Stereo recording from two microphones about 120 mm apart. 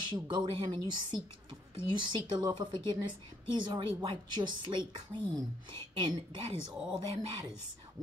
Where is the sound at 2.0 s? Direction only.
40° right (ahead or behind).